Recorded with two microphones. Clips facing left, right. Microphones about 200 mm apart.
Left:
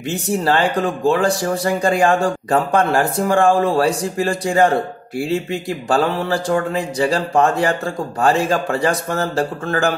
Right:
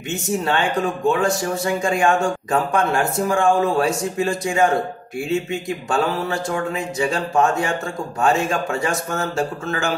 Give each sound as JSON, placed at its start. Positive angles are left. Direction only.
{"t": 0.1, "sound": "speech", "side_deg": 35}